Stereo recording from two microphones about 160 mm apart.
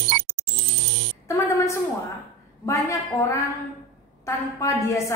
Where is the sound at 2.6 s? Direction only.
20° left (ahead or behind).